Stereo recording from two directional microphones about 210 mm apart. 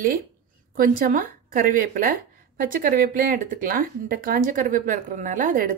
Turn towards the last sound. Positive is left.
turn(degrees=-40)  # may be behind; listen again after turning